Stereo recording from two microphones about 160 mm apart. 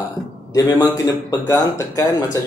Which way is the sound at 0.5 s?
10° left (ahead or behind).